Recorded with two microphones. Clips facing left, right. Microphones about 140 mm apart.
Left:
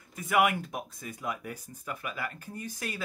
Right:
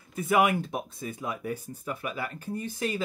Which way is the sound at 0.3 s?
30° right (ahead or behind).